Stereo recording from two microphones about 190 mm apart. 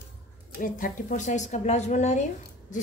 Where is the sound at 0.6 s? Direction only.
45° left (ahead or behind).